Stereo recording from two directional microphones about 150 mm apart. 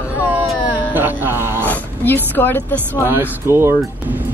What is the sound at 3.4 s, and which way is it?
Speech, 15° right (ahead or behind).